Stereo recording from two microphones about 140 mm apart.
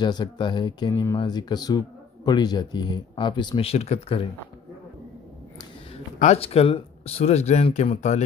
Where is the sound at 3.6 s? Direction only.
50° left (ahead or behind).